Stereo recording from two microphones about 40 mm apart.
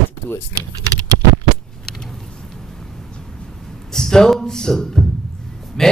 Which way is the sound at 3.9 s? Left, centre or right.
Centre.